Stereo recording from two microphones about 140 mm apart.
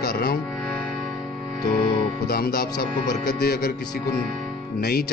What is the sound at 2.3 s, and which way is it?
Speech, 90° left.